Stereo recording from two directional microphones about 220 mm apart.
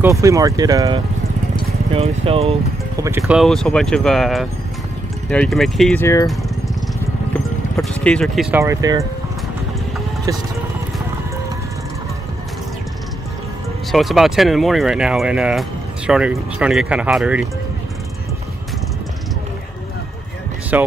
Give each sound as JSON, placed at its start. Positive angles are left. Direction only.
{"t": 0.0, "sound": "speech", "side_deg": -15}
{"t": 3.0, "sound": "speech", "side_deg": -10}
{"t": 7.7, "sound": "speech", "side_deg": 5}
{"t": 8.5, "sound": "speech", "side_deg": -15}
{"t": 13.9, "sound": "speech", "side_deg": 0}
{"t": 20.7, "sound": "speech", "side_deg": -5}